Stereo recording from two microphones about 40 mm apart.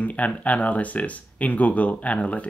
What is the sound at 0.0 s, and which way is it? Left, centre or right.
Speech, left.